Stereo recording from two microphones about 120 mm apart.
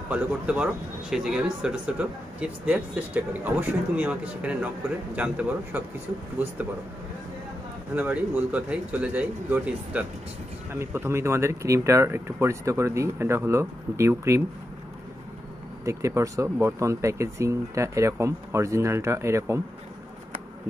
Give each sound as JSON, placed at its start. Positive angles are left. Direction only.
{"t": 0.1, "sound": "speech", "side_deg": -10}
{"t": 7.9, "sound": "speech", "side_deg": -15}
{"t": 15.8, "sound": "speech", "side_deg": -25}